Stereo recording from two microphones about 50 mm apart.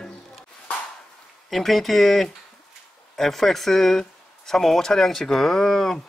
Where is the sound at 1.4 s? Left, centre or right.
Centre.